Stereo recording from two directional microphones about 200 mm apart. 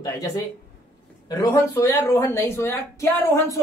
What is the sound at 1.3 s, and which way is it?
A woman's voice, 15° left (ahead or behind).